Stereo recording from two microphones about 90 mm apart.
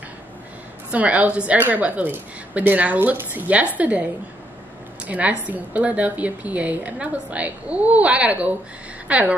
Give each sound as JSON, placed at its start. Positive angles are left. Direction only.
{"t": 0.9, "sound": "a woman's voice", "side_deg": -15}
{"t": 5.0, "sound": "a woman's voice", "side_deg": -15}